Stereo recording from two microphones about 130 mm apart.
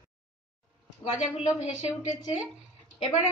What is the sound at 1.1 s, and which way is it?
Speech, 10° right (ahead or behind).